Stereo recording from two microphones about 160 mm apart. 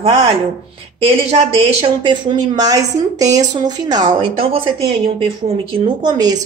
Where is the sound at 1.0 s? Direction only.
35° right (ahead or behind).